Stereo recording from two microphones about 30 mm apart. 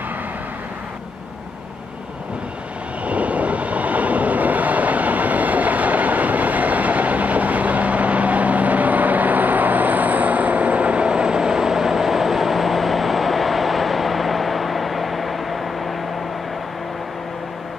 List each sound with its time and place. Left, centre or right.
3.1 s vehicle: right; by 15.9 s centre